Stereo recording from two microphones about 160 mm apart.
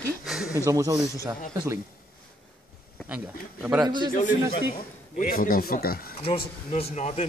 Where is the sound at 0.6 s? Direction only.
20° right (ahead or behind).